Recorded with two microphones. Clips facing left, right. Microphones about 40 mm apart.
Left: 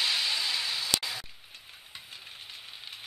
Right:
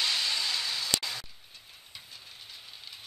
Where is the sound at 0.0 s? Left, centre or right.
Centre.